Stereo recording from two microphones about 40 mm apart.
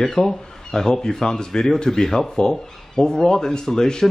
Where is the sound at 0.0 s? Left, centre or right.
Centre.